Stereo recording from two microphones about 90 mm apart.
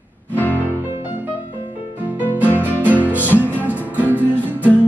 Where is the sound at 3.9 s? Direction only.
20° right (ahead or behind).